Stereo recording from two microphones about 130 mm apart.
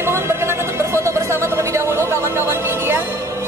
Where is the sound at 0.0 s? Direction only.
20° right (ahead or behind).